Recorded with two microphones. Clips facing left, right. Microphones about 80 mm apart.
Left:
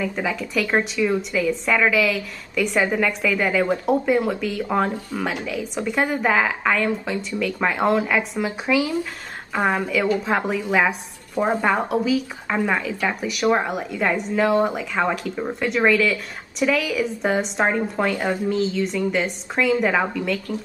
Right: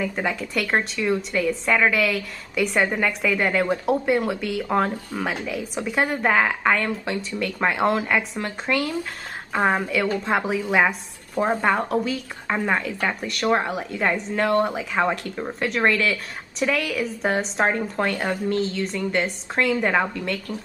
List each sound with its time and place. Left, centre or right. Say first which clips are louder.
0.0 s speech: left 1 dB; centre
9.5 s a woman's voice: even; centre